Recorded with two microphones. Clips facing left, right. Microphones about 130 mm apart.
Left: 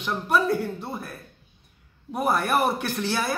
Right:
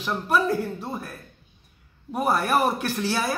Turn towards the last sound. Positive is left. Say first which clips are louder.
# right 1 dB
turn(degrees=0)  # may be behind; listen again after turning